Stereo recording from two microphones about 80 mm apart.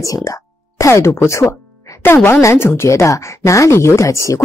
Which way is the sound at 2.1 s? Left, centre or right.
Left.